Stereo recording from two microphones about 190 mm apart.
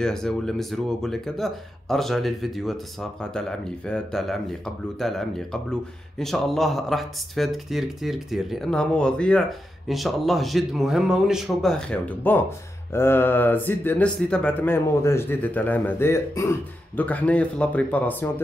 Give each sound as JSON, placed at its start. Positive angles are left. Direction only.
{"t": 0.0, "sound": "speech", "side_deg": 5}